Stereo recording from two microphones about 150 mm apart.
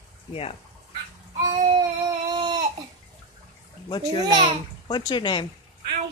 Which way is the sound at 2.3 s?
30° right (ahead or behind).